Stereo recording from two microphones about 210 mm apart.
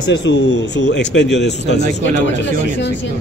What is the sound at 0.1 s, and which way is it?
A man's voice, 60° left (ahead or behind).